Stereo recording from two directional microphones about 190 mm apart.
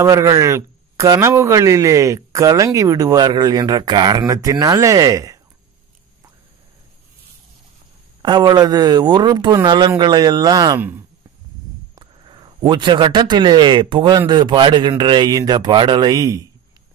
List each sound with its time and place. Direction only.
0.0 s a man's voice: 15° right (ahead or behind)
8.2 s a man's voice: 20° right (ahead or behind)
11.9 s a man's voice: 25° right (ahead or behind)